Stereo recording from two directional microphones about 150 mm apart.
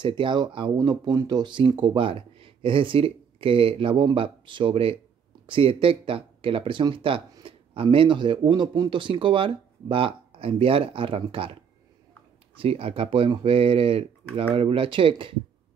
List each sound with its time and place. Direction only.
0.0 s speech: 30° right (ahead or behind)
12.5 s speech: 40° right (ahead or behind)